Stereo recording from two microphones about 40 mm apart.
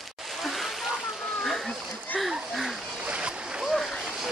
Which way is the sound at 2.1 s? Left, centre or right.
Centre.